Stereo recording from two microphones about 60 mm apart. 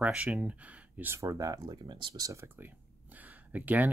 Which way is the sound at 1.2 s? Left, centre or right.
Right.